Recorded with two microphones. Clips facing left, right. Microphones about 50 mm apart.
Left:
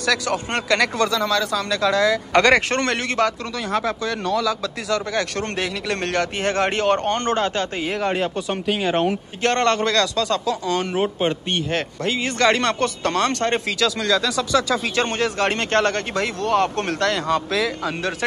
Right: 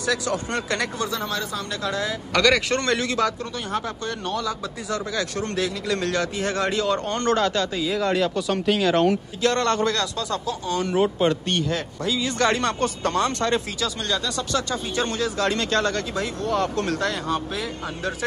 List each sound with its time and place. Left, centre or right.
0.3 s speech: left
0.9 s speech: left
2.3 s speech: left
4.9 s speech: left
7.2 s speech: left
7.8 s speech: left
8.8 s speech: left
9.4 s speech: left
11.0 s speech: left
11.7 s speech: left
13.7 s speech: left
15.0 s speech: left
17.0 s speech: left